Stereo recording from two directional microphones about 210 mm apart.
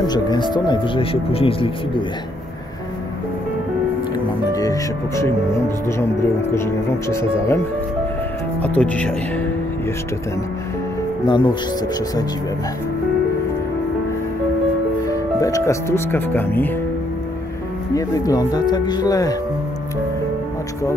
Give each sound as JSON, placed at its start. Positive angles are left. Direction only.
{"t": 0.0, "sound": "speech", "side_deg": 20}
{"t": 4.6, "sound": "speech", "side_deg": 15}
{"t": 6.5, "sound": "speech", "side_deg": 10}
{"t": 8.6, "sound": "speech", "side_deg": 5}
{"t": 11.2, "sound": "speech", "side_deg": 20}
{"t": 15.0, "sound": "speech", "side_deg": 15}
{"t": 17.9, "sound": "speech", "side_deg": 15}